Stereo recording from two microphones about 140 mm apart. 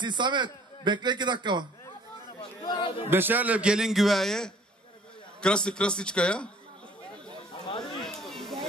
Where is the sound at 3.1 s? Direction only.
15° right (ahead or behind); by 6.5 s 5° left (ahead or behind).